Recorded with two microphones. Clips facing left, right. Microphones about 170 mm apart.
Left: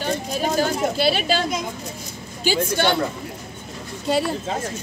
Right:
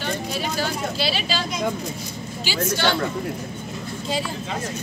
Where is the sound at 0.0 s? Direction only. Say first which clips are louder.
Left 3 dB; 45° left (ahead or behind).